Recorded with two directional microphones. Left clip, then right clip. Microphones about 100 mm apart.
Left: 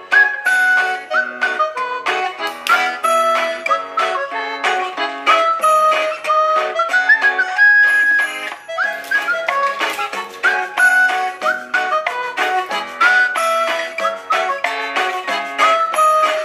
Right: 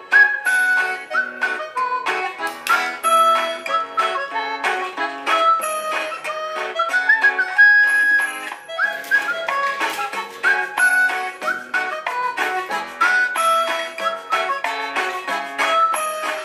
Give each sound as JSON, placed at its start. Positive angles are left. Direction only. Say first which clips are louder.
{"t": 0.1, "sound": "music", "louder": "left 1 dB", "side_deg": 25}